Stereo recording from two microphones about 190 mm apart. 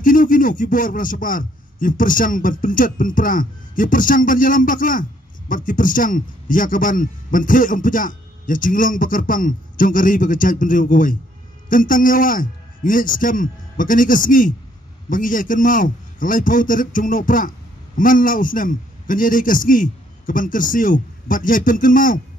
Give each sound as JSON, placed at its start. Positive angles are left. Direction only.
{"t": 0.0, "sound": "a man's voice", "side_deg": 45}